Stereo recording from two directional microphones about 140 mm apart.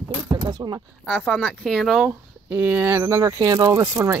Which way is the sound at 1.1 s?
5° left (ahead or behind).